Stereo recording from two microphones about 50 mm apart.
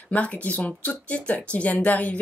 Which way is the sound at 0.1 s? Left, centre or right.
Left.